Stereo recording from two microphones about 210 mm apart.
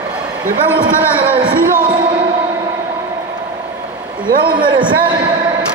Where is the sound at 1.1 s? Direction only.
25° right (ahead or behind).